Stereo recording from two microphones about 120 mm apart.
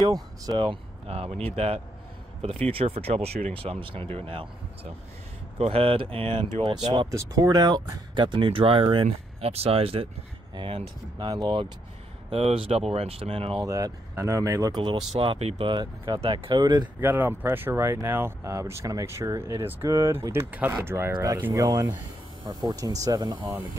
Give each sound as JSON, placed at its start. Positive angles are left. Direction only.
{"t": 0.0, "sound": "speech", "side_deg": -35}
{"t": 0.7, "sound": "speech", "side_deg": -55}
{"t": 5.6, "sound": "speech", "side_deg": -55}
{"t": 6.9, "sound": "speech", "side_deg": -30}
{"t": 10.5, "sound": "speech", "side_deg": -40}
{"t": 12.3, "sound": "speech", "side_deg": -55}
{"t": 13.7, "sound": "speech", "side_deg": -30}
{"t": 14.8, "sound": "speech", "side_deg": -40}
{"t": 15.1, "sound": "speech", "side_deg": -55}
{"t": 15.7, "sound": "speech", "side_deg": -35}
{"t": 16.2, "sound": "speech", "side_deg": -55}
{"t": 16.5, "sound": "speech", "side_deg": -35}
{"t": 17.0, "sound": "speech", "side_deg": -15}